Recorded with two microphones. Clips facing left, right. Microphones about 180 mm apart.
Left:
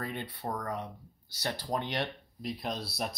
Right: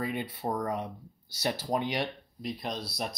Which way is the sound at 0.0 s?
10° right (ahead or behind).